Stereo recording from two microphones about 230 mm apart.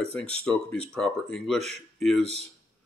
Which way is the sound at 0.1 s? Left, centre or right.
Centre.